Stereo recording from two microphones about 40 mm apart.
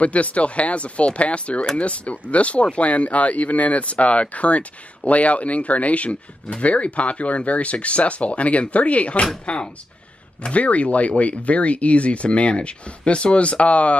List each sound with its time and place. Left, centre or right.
0.0 s speech: left